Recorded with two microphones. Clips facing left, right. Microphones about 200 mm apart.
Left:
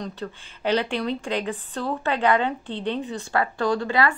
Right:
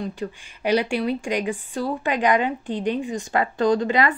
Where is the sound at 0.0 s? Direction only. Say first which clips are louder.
Right 3 dB; 10° right (ahead or behind).